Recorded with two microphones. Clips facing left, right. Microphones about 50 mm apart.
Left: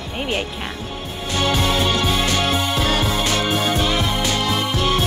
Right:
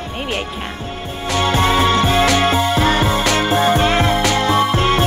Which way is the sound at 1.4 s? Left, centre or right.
Right.